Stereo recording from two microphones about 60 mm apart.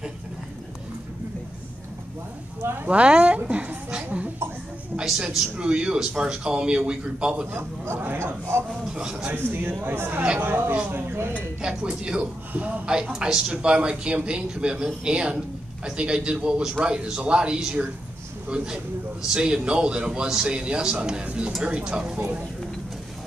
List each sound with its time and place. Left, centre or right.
2.6 s speech: right
2.9 s a sound: right
5.0 s a woman's voice: centre
7.5 s speech: right
8.9 s speech: centre
9.3 s speech: right
11.6 s speech: centre
12.8 s speech: centre
19.3 s speech: centre